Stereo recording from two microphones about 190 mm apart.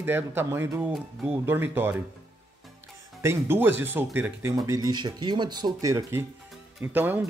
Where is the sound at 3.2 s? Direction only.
15° right (ahead or behind).